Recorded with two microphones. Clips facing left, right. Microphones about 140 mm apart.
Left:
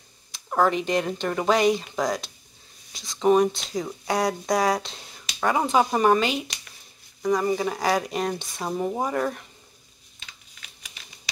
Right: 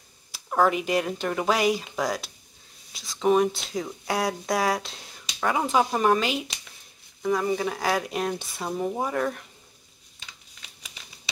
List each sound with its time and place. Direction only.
0.5 s speech: 5° right (ahead or behind)